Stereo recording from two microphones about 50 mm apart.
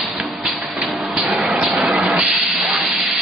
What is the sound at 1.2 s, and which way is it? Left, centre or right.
Vehicle, centre.